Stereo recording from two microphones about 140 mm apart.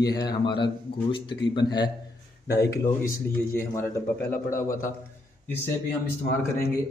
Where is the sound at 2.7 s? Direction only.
20° left (ahead or behind).